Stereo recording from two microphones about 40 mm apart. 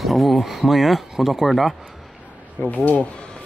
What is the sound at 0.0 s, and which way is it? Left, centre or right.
Speech, centre.